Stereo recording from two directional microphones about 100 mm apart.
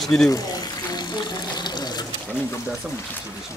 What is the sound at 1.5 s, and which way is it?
Water, 45° left (ahead or behind).